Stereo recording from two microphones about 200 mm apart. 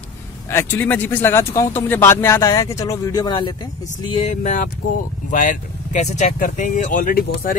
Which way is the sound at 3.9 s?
35° left (ahead or behind).